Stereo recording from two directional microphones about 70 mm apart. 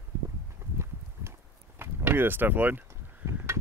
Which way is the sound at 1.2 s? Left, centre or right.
Right.